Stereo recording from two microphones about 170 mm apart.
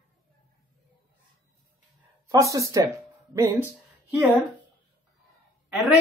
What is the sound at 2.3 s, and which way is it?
Speech, 20° right (ahead or behind).